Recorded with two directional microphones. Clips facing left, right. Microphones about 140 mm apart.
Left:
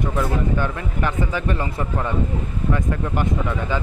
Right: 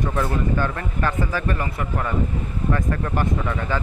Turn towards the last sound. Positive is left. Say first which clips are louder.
# left 1 dB
turn(degrees=15)  # may be behind; listen again after turning